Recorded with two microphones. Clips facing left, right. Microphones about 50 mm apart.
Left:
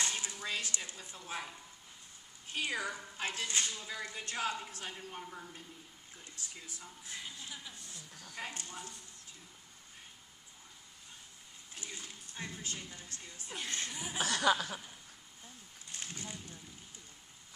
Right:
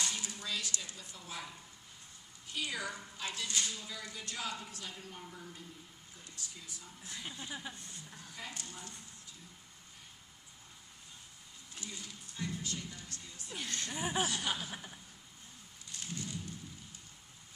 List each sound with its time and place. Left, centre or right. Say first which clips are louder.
0.0 s a woman's voice: left 2 dB; left
7.2 s speech: right 4 dB; right
8.4 s speech: left 4 dB; left
11.7 s a sound: even; left
13.8 s speech: right 5 dB; right
14.2 s chuckle: left 6 dB; left
15.9 s a sound: right 2 dB; left